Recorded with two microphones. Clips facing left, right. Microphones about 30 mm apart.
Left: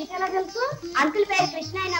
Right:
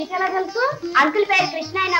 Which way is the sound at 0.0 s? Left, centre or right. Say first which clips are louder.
Right 5 dB; right.